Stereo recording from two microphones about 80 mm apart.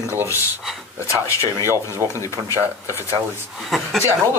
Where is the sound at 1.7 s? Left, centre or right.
Right.